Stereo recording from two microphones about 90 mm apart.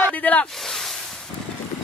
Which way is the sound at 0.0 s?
15° left (ahead or behind).